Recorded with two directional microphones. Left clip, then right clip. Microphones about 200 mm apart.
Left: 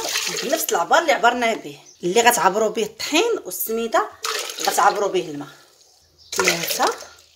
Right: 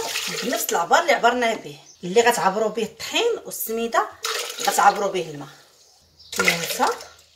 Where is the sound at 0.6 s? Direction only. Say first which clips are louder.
Left 1 dB; 50° left (ahead or behind).